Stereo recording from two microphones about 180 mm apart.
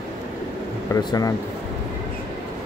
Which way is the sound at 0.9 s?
20° left (ahead or behind).